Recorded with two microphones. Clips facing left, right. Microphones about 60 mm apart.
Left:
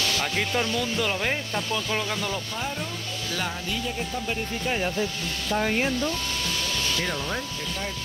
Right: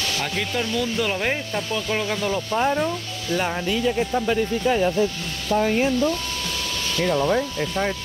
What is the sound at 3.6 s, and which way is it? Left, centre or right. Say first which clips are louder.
Speech: right 8 dB; right.